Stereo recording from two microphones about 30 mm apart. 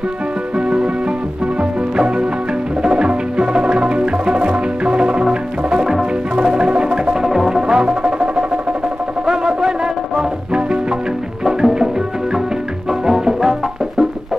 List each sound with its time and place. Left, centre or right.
0.6 s music: right
7.2 s music: centre
7.6 s music: right
11.4 s music: centre
13.0 s music: centre